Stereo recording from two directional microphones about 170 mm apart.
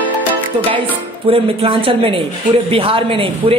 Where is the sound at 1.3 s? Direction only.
30° right (ahead or behind).